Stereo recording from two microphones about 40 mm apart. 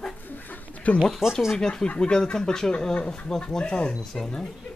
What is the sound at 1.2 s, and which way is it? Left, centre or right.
Speech, centre.